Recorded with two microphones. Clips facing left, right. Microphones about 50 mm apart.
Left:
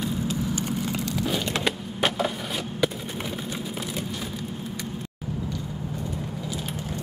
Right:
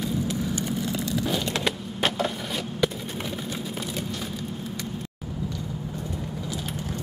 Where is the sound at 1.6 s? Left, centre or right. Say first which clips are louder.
Left 1 dB; centre.